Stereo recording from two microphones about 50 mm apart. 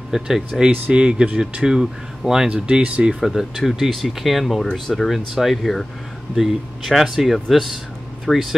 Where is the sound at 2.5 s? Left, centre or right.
Right.